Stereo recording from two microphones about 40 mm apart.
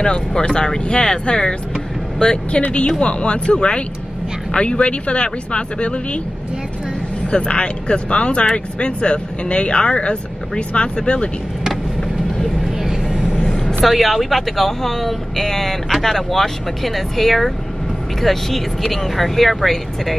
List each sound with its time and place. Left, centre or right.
0.0 s speech: centre
7.2 s speech: left
13.8 s speech: centre